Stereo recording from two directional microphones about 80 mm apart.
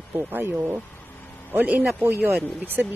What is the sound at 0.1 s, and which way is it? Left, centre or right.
A man's voice, right.